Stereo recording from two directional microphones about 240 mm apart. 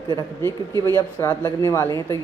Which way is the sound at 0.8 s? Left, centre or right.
Centre.